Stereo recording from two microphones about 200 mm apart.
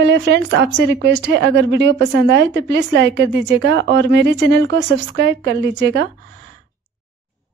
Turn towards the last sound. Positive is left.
turn(degrees=-60)  # may be behind; listen again after turning